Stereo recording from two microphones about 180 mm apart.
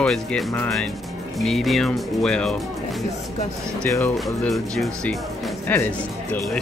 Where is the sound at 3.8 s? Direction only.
15° left (ahead or behind).